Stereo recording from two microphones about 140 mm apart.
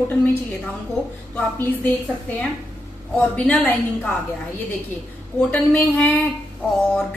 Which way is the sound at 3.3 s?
10° left (ahead or behind).